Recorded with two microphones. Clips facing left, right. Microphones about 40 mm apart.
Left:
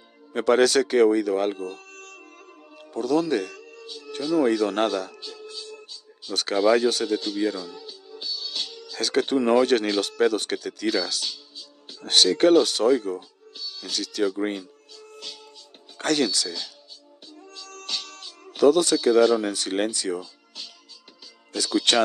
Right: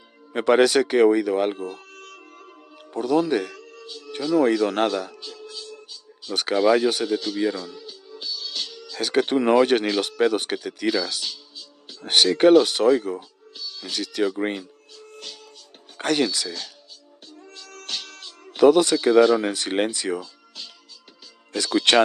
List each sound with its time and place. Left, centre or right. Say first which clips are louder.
0.3 s music: right 2 dB; right
2.9 s speech: right 2 dB; right; by 5.7 s centre
6.3 s speech: right 1 dB; centre
7.7 s music: right 1 dB; centre
8.9 s speech: right 2 dB; centre
12.0 s speech: right 2 dB; right
16.0 s speech: right 1 dB; centre
17.7 s music: even; centre
18.6 s speech: right 2 dB; right
21.5 s speech: right 3 dB; right